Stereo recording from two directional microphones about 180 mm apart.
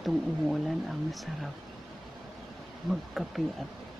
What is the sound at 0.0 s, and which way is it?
Speech, centre (ahead or behind).